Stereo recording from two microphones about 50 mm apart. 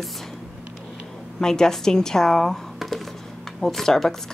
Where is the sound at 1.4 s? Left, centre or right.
Centre.